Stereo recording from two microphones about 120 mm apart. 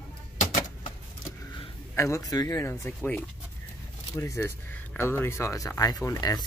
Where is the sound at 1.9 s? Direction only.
25° left (ahead or behind).